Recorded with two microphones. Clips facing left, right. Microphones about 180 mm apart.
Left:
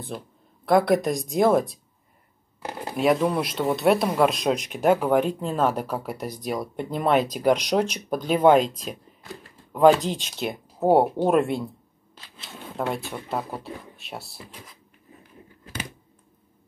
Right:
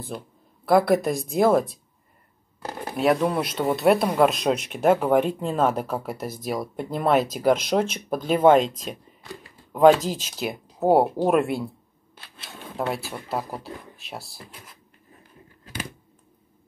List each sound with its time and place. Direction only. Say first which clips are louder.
0.7 s speech: right 1 dB; centre (ahead or behind)
2.9 s speech: even; centre (ahead or behind)
12.7 s speech: even; 5° right (ahead or behind)